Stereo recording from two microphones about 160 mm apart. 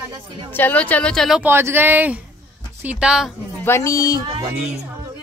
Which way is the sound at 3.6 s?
15° left (ahead or behind).